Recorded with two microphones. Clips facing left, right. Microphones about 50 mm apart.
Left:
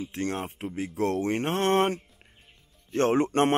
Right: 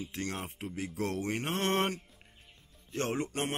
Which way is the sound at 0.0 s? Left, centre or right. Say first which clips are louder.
Left 7 dB; left.